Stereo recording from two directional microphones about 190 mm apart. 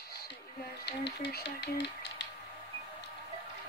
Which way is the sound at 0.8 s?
65° left (ahead or behind).